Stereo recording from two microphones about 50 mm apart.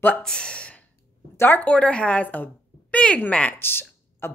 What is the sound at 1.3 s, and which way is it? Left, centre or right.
Speech, left.